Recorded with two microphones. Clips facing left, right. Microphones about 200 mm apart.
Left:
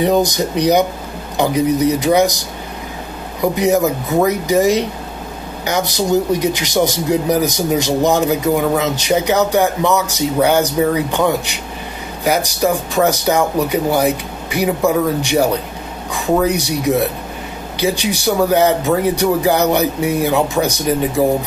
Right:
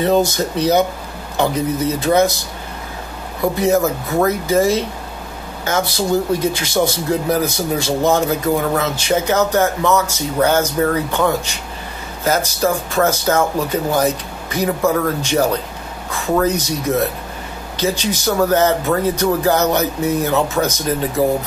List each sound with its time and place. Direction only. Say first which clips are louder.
0.0 s speech: left 1 dB; 15° left (ahead or behind)
3.5 s speech: left 1 dB; 15° left (ahead or behind)